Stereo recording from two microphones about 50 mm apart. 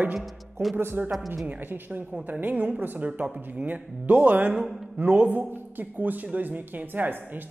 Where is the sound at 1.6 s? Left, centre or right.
Right.